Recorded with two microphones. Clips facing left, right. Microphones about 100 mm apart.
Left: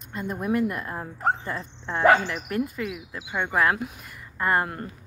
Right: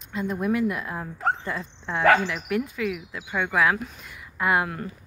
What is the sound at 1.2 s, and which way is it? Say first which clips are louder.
Speech: left 1 dB; 15° left (ahead or behind).